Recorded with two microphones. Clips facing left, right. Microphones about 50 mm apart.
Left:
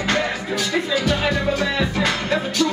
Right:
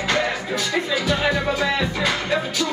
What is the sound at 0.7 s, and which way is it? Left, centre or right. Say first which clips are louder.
Speech: left 1 dB; centre.